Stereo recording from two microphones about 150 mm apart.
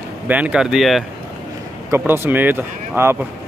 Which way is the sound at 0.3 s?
10° right (ahead or behind).